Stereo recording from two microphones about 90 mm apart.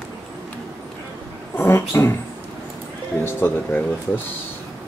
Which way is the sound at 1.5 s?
30° left (ahead or behind).